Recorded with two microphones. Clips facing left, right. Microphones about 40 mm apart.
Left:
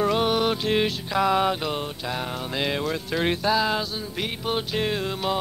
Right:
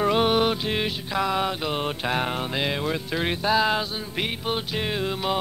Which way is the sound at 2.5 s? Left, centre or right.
Centre.